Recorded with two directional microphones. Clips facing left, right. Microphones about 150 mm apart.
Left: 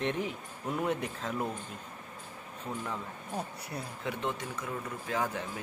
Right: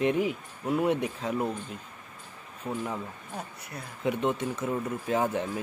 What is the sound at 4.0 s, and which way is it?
Speech, 20° right (ahead or behind).